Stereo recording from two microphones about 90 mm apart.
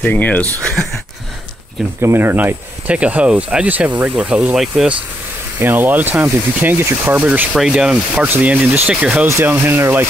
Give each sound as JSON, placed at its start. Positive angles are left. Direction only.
{"t": 0.0, "sound": "speech", "side_deg": 20}
{"t": 2.0, "sound": "speech", "side_deg": -25}
{"t": 5.6, "sound": "speech", "side_deg": -20}
{"t": 7.5, "sound": "speech", "side_deg": -5}
{"t": 9.3, "sound": "speech", "side_deg": -30}